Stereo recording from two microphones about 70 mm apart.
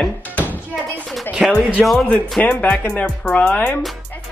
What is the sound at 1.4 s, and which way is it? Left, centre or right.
Speech, centre.